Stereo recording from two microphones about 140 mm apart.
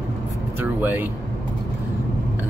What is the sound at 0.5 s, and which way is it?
Speech, 15° right (ahead or behind).